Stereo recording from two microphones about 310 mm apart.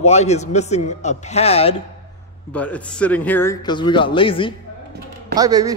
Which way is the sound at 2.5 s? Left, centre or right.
Centre.